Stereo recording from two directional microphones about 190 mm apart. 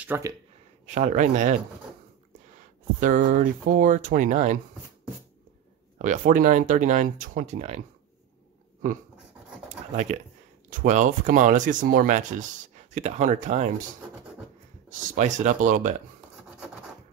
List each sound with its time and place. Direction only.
0.0 s speech: 10° right (ahead or behind)
0.8 s speech: 40° right (ahead or behind)
3.0 s speech: 45° right (ahead or behind)
5.9 s speech: 40° right (ahead or behind)
9.7 s a sound: 40° right (ahead or behind)
10.7 s speech: 40° right (ahead or behind)
14.9 s speech: 40° right (ahead or behind)